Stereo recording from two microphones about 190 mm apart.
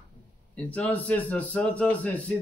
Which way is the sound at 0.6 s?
5° left (ahead or behind).